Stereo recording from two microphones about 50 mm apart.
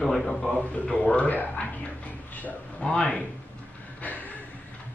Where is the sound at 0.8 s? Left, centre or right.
Centre.